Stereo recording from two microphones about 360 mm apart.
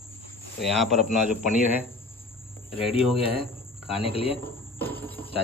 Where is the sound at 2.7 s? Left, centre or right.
Centre.